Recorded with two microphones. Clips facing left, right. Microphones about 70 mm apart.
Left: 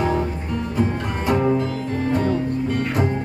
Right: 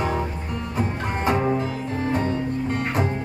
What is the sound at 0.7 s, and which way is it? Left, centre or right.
Music, right.